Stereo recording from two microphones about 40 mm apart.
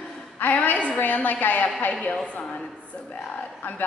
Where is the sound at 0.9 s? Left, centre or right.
Left.